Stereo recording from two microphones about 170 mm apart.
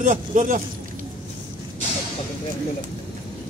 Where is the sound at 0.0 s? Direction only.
45° right (ahead or behind).